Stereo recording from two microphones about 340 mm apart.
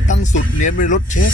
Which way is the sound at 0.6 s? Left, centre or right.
Left.